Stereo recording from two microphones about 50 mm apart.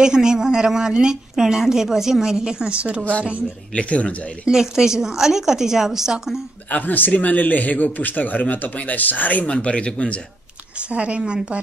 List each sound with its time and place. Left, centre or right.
0.0 s a woman's voice: centre
3.7 s speech: left
4.5 s a woman's voice: centre
6.7 s speech: left
9.5 s speech: left
10.9 s speech: right